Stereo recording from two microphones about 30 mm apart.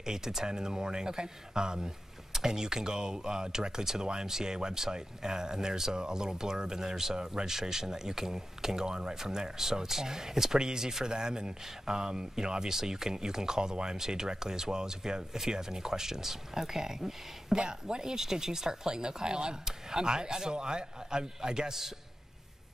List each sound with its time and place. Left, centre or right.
0.0 s speech: centre